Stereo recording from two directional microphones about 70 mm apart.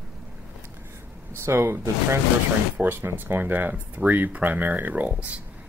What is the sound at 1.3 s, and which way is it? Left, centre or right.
Speech, right.